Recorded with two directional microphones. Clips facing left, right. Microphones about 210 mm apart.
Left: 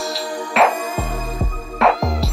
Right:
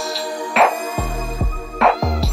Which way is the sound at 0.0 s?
Centre (ahead or behind).